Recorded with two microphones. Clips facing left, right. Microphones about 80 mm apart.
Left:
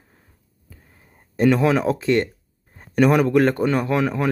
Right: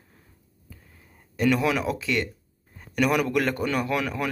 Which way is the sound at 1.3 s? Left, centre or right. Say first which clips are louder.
Left 6 dB; left.